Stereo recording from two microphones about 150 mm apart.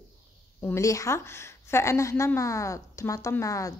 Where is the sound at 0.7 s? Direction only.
20° left (ahead or behind).